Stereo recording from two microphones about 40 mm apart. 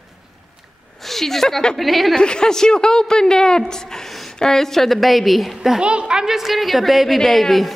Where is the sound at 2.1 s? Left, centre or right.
Centre.